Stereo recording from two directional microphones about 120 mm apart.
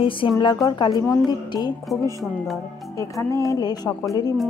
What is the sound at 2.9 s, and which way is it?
Music, 25° left (ahead or behind).